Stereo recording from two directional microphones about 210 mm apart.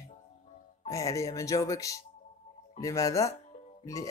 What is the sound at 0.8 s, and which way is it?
Speech, 15° left (ahead or behind).